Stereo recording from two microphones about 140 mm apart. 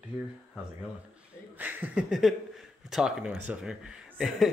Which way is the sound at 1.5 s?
10° right (ahead or behind).